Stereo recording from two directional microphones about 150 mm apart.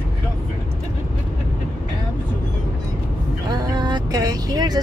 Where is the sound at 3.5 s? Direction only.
25° right (ahead or behind).